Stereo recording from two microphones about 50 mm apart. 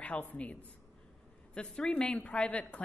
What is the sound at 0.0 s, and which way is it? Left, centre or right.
Speech, left.